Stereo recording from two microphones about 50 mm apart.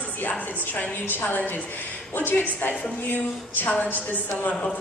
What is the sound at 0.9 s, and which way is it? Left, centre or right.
A woman's voice, left.